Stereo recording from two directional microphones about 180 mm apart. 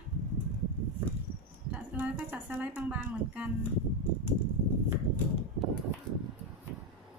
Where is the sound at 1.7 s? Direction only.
10° right (ahead or behind).